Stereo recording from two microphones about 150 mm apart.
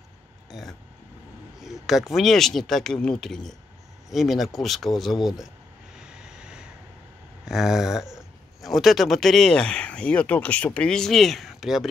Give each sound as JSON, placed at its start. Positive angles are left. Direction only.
{"t": 0.5, "sound": "a sound", "side_deg": 0}
{"t": 1.6, "sound": "speech", "side_deg": 0}
{"t": 5.9, "sound": "vehicle", "side_deg": -5}
{"t": 7.4, "sound": "speech", "side_deg": -5}